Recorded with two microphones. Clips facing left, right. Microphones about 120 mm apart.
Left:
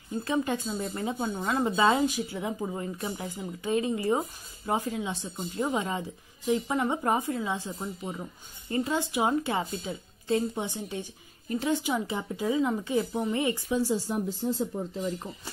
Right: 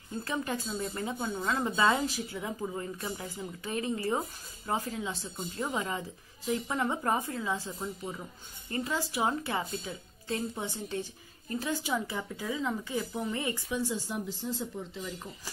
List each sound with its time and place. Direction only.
0.2 s a woman's voice: 20° left (ahead or behind); by 15.1 s 45° left (ahead or behind)